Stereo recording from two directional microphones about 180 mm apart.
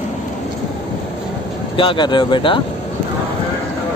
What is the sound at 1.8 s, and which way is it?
Speech, 25° left (ahead or behind).